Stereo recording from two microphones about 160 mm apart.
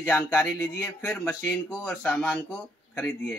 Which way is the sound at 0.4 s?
5° left (ahead or behind).